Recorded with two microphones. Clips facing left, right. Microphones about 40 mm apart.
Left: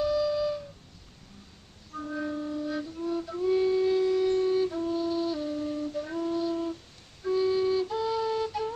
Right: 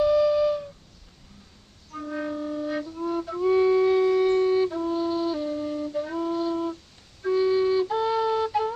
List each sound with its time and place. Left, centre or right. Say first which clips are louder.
0.0 s a sound: right 6 dB; right
2.0 s flute: right 2 dB; right
4.6 s music: right 3 dB; right
6.0 s flute: right 1 dB; centre